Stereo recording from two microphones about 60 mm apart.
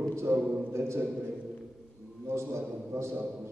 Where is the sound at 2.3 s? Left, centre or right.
Right.